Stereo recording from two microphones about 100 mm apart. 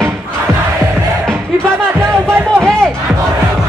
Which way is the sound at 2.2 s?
10° left (ahead or behind).